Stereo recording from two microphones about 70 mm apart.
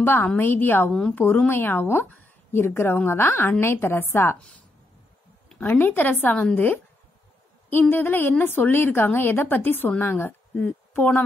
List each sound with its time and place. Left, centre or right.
0.0 s a woman's voice: left
5.6 s a woman's voice: left
7.9 s a woman's voice: left